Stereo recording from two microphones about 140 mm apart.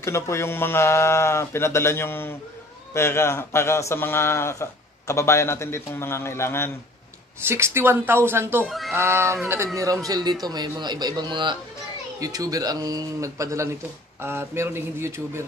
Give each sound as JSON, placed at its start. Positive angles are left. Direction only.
{"t": 0.0, "sound": "a man's voice", "side_deg": 20}
{"t": 7.4, "sound": "speech", "side_deg": -20}
{"t": 8.6, "sound": "speech", "side_deg": 0}
{"t": 8.9, "sound": "speech", "side_deg": -20}